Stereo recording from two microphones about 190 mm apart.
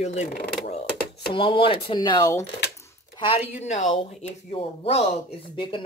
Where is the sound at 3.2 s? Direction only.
30° left (ahead or behind).